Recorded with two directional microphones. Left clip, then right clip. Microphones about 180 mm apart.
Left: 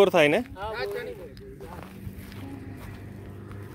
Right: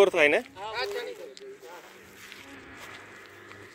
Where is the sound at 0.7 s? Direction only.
65° left (ahead or behind).